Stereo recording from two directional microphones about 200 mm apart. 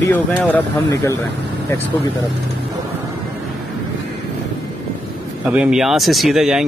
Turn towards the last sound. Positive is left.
turn(degrees=0)  # may be behind; listen again after turning